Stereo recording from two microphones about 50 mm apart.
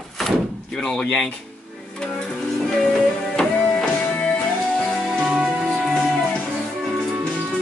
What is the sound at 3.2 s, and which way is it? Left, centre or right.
Music, centre.